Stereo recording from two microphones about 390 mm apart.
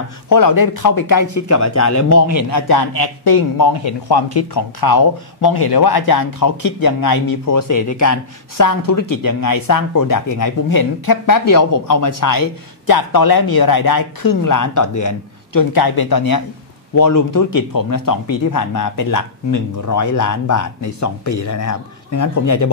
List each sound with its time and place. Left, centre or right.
0.3 s speech: left
2.5 s a man's voice: left